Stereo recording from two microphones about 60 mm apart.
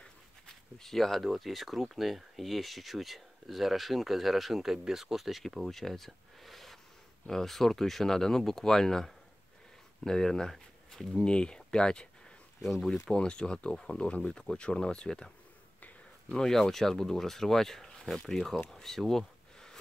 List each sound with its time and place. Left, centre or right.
0.0 s speech: centre
11.2 s speech: centre
13.0 s speech: centre
18.7 s bee: centre